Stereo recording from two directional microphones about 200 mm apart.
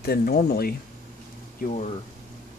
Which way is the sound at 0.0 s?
50° left (ahead or behind).